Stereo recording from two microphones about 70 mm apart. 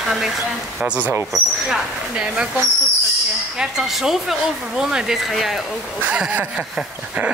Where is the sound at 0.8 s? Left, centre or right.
Centre.